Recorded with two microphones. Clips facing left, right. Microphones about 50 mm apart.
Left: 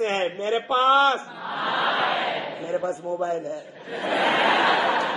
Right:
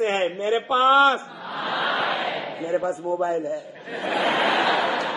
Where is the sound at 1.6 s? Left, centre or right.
Left.